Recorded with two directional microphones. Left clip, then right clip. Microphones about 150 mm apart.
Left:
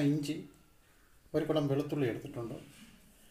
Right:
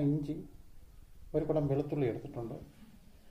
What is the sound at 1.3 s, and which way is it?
A man's voice, 40° left (ahead or behind).